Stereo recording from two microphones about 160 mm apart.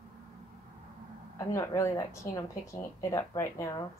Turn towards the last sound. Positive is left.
turn(degrees=20)  # may be behind; listen again after turning